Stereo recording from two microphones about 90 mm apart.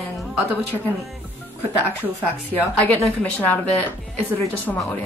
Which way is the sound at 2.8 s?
20° left (ahead or behind).